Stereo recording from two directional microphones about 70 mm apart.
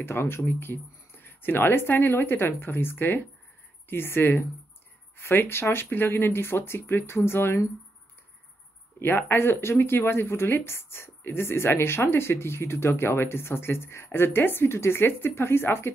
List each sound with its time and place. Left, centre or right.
0.0 s speech: left
9.0 s speech: left